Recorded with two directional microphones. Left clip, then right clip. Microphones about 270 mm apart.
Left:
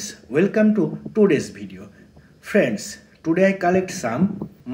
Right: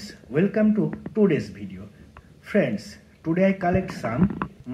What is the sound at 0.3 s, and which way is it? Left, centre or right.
Speech, centre.